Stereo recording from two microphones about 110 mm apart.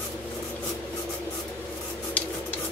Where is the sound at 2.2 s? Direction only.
15° left (ahead or behind).